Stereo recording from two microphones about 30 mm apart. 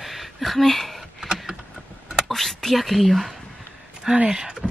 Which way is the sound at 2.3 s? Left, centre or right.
Centre.